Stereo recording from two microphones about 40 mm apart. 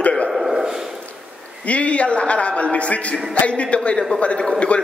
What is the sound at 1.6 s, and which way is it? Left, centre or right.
A man's voice, left.